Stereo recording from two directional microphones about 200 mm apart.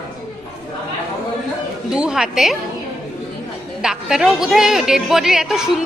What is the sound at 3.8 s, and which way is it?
A woman's voice, centre (ahead or behind).